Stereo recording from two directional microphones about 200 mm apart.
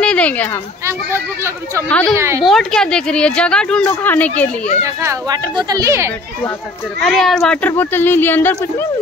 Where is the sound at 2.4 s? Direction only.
Centre (ahead or behind).